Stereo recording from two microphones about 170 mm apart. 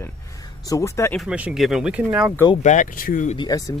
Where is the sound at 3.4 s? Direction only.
20° left (ahead or behind).